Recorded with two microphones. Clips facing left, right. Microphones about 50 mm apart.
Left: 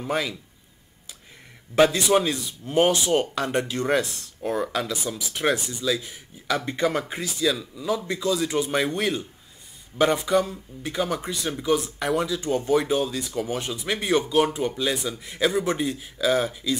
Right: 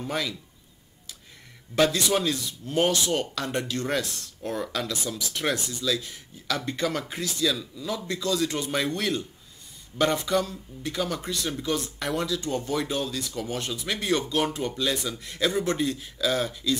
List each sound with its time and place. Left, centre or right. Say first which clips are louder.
0.0 s speech: left 3 dB; centre
1.8 s speech: left 4 dB; centre